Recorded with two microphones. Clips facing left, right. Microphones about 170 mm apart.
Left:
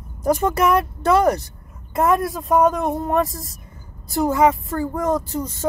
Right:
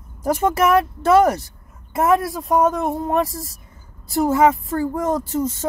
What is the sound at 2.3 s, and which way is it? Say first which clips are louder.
Speech: left 1 dB; centre (ahead or behind).